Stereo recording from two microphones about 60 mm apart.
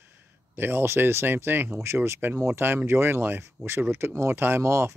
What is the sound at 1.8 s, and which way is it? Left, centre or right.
Speech, right.